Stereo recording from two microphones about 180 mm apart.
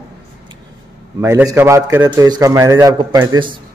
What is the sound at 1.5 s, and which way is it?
A man's voice, 15° right (ahead or behind).